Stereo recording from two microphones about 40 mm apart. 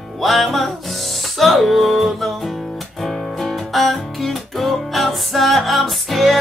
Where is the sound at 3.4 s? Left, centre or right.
Centre.